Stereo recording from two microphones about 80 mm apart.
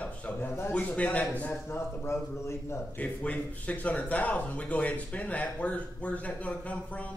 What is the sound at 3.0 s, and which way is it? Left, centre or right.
Speech, centre.